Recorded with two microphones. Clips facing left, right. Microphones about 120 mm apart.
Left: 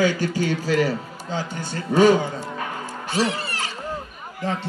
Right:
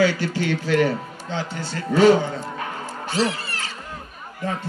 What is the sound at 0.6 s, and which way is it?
Speech, 35° left (ahead or behind).